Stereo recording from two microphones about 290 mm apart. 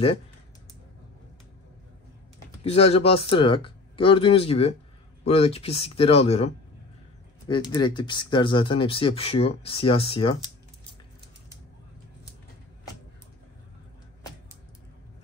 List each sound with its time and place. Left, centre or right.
2.7 s speech: centre